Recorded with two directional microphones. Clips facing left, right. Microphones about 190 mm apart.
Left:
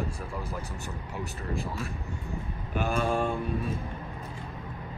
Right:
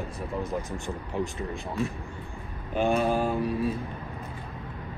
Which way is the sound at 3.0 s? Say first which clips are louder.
Right 2 dB; 5° right (ahead or behind).